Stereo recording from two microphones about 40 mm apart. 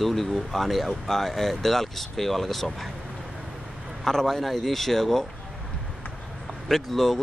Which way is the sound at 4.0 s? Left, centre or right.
Centre.